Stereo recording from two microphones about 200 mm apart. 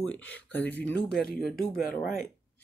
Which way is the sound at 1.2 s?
50° left (ahead or behind).